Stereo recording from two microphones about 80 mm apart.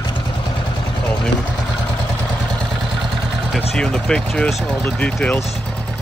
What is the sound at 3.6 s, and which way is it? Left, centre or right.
Speech, centre.